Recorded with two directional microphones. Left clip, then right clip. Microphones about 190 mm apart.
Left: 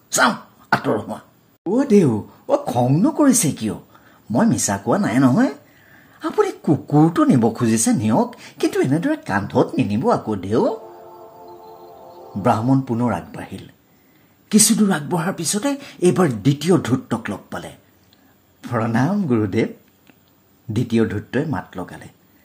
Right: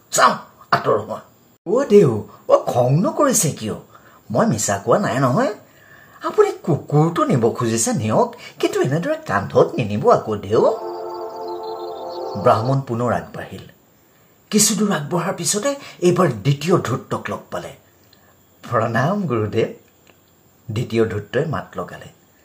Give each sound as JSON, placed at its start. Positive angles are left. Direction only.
{"t": 1.7, "sound": "speech", "side_deg": 35}
{"t": 10.9, "sound": "music", "side_deg": -40}
{"t": 12.4, "sound": "speech", "side_deg": 35}
{"t": 20.7, "sound": "speech", "side_deg": 40}